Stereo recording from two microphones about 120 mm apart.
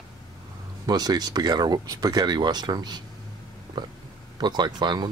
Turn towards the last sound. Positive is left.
turn(degrees=-35)  # may be behind; listen again after turning